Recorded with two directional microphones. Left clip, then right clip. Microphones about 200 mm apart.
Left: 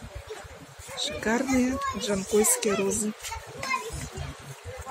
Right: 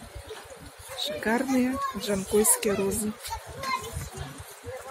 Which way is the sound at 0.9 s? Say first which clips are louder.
Even; centre (ahead or behind).